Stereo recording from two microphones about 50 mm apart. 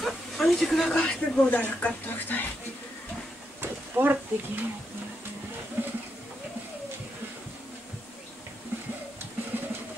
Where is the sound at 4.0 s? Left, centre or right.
Right.